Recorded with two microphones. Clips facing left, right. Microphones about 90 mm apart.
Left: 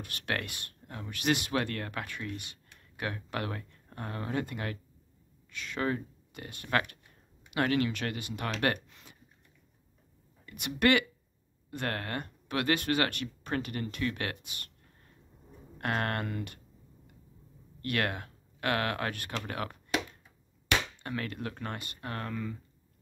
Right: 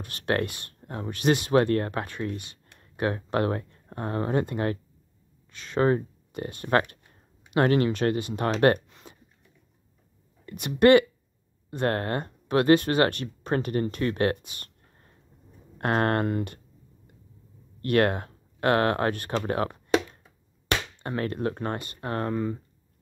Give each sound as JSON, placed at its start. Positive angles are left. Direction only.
{"t": 0.0, "sound": "speech", "side_deg": -30}
{"t": 9.0, "sound": "a sound", "side_deg": -35}
{"t": 10.4, "sound": "speech", "side_deg": -30}
{"t": 15.8, "sound": "speech", "side_deg": -35}
{"t": 17.8, "sound": "speech", "side_deg": -35}